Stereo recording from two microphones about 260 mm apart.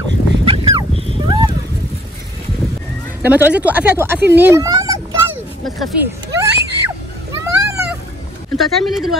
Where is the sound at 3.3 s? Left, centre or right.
Centre.